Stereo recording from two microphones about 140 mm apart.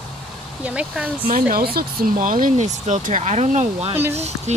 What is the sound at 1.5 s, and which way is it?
Speech, 90° right.